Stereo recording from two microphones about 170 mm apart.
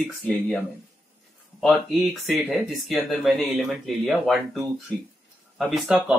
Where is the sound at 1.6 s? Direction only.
Centre (ahead or behind).